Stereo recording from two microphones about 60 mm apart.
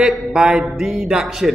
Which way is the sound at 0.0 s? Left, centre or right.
Centre.